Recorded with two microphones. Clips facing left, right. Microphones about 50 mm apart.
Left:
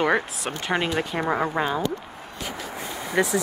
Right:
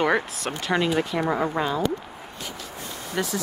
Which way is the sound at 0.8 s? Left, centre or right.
Left.